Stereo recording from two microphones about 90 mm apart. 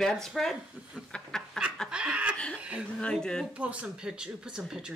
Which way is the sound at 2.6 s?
15° right (ahead or behind).